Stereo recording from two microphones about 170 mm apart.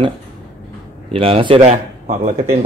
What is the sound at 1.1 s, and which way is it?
Speech, 35° right (ahead or behind).